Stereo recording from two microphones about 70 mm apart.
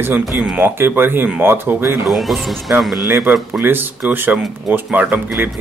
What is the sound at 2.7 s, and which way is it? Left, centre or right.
Speech, centre.